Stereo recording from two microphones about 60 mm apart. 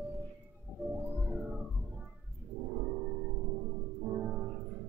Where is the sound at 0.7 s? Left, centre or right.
Centre.